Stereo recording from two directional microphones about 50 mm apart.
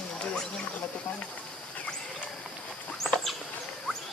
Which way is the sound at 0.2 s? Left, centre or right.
Centre.